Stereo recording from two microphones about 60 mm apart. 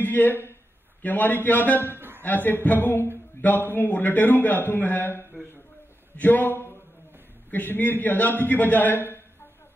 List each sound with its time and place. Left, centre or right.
0.0 s a man's voice: left
2.0 s a sound: right
2.2 s a man's voice: left